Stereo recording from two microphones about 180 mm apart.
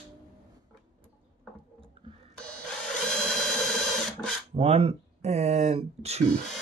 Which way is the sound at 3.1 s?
5° left (ahead or behind).